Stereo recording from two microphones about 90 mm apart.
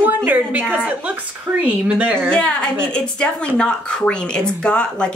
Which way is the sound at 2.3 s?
10° left (ahead or behind).